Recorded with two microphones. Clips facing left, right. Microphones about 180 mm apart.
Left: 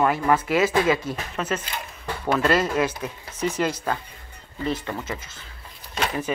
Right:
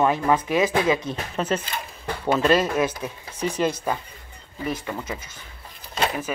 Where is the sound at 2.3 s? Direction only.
15° right (ahead or behind).